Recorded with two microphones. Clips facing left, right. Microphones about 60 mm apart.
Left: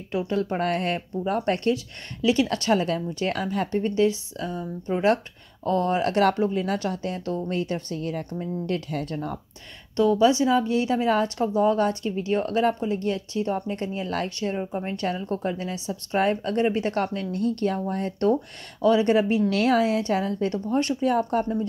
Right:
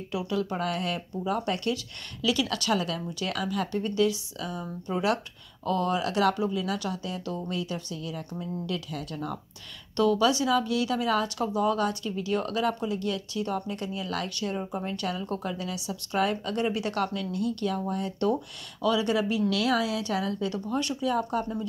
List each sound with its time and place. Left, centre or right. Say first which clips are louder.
0.1 s a woman's voice: left 4 dB; left
9.9 s a woman's voice: left 4 dB; left